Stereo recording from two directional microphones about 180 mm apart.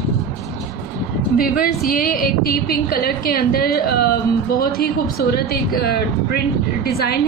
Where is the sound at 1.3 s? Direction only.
55° left (ahead or behind).